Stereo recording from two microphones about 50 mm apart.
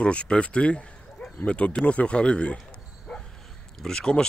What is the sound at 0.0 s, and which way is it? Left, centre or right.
Speech, left.